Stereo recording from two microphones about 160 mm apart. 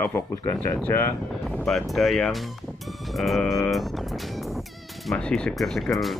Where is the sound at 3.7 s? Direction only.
Centre (ahead or behind).